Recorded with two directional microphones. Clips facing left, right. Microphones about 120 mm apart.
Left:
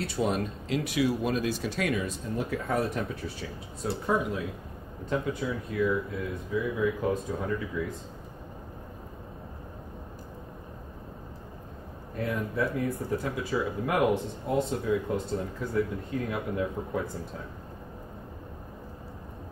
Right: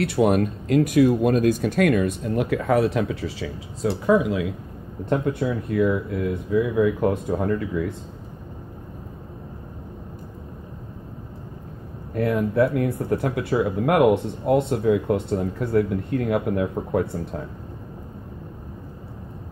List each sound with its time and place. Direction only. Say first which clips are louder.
0.0 s speech: right 9 dB; 65° right (ahead or behind); by 4.5 s 90° right
5.1 s speech: right 7 dB; 65° right (ahead or behind)
12.2 s speech: right 10 dB; 65° right (ahead or behind)